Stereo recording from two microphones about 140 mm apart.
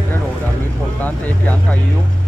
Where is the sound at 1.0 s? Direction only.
10° left (ahead or behind).